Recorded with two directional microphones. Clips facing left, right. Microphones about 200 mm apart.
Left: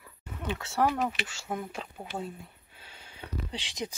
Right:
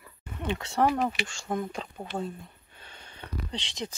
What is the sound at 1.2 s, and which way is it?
Speech, 5° left (ahead or behind).